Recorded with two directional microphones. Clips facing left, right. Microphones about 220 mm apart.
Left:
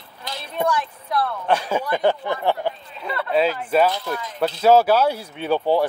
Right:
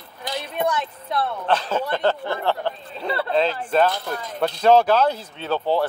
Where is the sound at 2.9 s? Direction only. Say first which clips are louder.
Right 3 dB; 30° right (ahead or behind).